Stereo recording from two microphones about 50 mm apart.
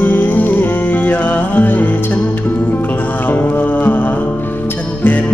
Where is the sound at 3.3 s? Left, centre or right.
Left.